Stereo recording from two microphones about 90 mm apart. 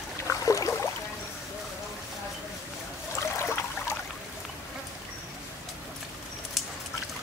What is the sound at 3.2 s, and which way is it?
Water, 30° left (ahead or behind).